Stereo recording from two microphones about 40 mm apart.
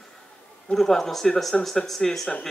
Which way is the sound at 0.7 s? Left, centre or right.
Centre.